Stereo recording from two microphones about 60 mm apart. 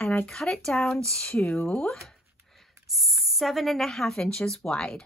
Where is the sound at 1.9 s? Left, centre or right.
Centre.